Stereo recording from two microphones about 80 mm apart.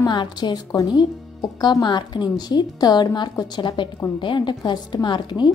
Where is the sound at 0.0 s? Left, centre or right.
Left.